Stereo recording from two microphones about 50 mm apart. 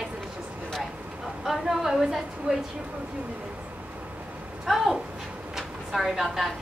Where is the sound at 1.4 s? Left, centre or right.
Centre.